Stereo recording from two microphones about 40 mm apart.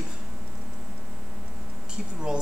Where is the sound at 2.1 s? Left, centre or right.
Right.